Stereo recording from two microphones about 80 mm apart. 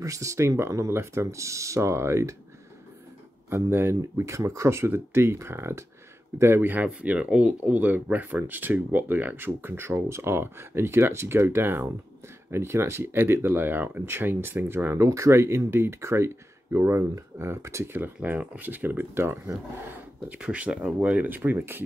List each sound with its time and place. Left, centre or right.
0.0 s speech: right
3.4 s speech: right
17.9 s speech: right
20.2 s speech: centre